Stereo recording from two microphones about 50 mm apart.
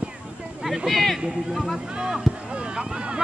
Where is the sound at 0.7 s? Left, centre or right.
Centre.